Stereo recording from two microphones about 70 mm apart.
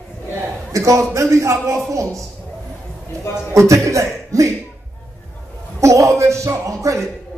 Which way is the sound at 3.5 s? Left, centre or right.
Right.